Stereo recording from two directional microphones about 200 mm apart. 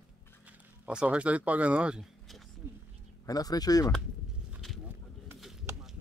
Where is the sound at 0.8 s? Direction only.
5° right (ahead or behind).